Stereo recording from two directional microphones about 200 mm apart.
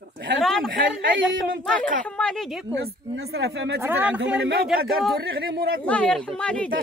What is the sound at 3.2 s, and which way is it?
Speech, 55° right (ahead or behind).